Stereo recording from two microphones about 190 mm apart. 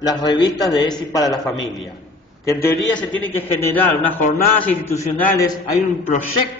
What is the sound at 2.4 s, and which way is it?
A man's voice, 10° left (ahead or behind).